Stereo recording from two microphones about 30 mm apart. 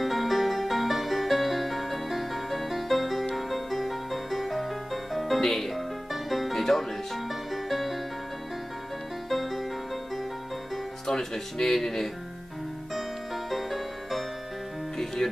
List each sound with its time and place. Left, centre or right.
0.0 s music: centre
9.3 s music: centre
11.1 s music: centre
12.9 s music: centre